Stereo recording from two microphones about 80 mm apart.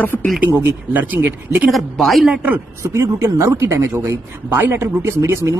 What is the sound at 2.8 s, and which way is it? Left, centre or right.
Speech, right.